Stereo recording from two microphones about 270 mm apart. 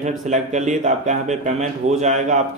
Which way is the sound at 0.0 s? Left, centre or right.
Right.